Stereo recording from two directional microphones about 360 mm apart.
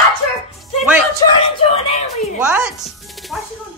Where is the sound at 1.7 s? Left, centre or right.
Centre.